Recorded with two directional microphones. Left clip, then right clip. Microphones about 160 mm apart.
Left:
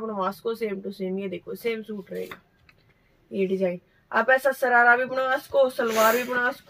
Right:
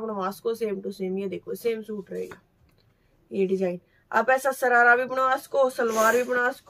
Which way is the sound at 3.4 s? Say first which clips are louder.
Even; 10° right (ahead or behind).